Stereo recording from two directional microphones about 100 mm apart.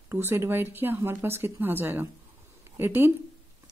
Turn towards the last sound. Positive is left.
turn(degrees=-20)  # may be behind; listen again after turning